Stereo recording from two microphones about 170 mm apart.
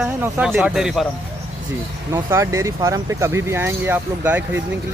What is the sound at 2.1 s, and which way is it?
Speech, 15° right (ahead or behind).